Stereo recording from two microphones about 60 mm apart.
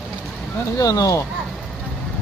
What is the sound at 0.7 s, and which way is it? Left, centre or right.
Speech, left.